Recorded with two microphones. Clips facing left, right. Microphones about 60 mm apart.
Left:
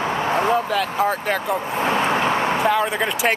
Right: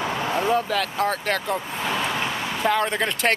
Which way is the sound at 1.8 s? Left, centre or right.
Left.